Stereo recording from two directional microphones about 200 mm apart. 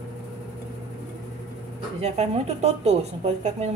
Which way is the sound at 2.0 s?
35° right (ahead or behind).